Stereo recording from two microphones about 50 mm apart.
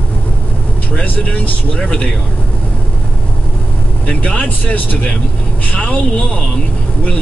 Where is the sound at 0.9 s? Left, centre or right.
Left.